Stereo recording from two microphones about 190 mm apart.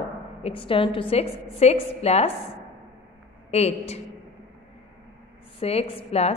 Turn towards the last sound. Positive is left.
turn(degrees=30)  # may be behind; listen again after turning